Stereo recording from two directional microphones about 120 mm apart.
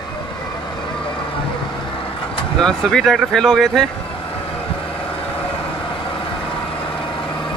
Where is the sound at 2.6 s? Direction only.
5° left (ahead or behind).